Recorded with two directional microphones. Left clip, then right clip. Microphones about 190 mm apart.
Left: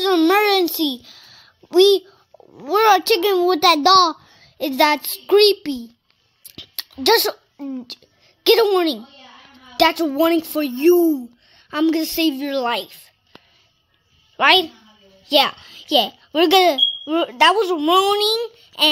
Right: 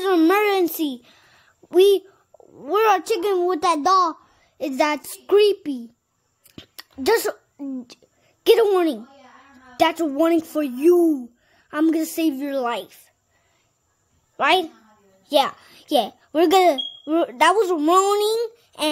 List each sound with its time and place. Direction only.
0.0 s a sound: 5° right (ahead or behind)
0.9 s a child's voice: centre (ahead or behind)
6.5 s a sound: 5° right (ahead or behind)
8.5 s a woman's voice: 5° right (ahead or behind)
16.0 s a child's voice: centre (ahead or behind)
17.2 s a woman's voice: 15° right (ahead or behind)
17.5 s a woman's voice: centre (ahead or behind)
18.3 s child singing: 20° right (ahead or behind)